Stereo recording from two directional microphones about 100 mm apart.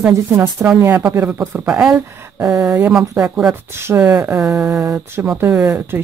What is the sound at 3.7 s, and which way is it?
Speech, 25° right (ahead or behind).